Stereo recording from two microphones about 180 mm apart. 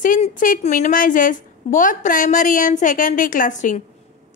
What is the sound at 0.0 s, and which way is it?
A woman's voice, 45° left (ahead or behind).